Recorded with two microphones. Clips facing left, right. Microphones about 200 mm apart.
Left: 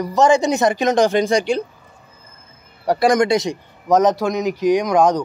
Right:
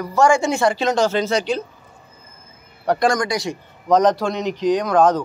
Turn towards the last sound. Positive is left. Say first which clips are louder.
# left 1 dB
turn(degrees=10)  # may be behind; listen again after turning